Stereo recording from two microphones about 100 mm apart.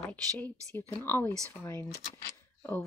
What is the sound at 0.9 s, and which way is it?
Speech, 20° left (ahead or behind).